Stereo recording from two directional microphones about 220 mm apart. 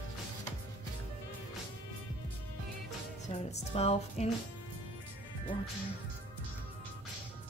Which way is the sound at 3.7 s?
30° left (ahead or behind).